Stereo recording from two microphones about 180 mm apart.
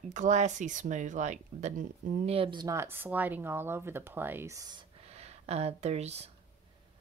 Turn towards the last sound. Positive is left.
turn(degrees=-35)  # may be behind; listen again after turning